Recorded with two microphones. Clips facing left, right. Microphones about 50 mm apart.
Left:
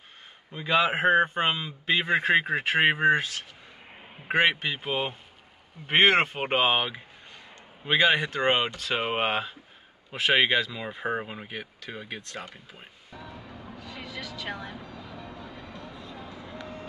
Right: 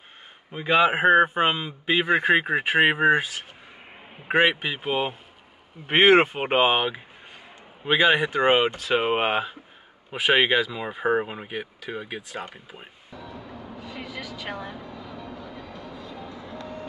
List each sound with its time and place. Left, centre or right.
0.5 s a man's voice: right
0.9 s a man's voice: centre
12.4 s a man's voice: right
13.7 s vehicle: centre
15.2 s train: left
15.9 s vehicle: centre
16.3 s vehicle: centre